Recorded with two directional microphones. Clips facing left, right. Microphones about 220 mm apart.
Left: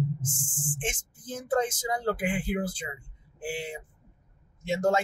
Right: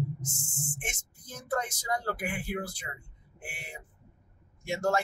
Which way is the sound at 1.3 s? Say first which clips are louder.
Left 6 dB; 20° left (ahead or behind).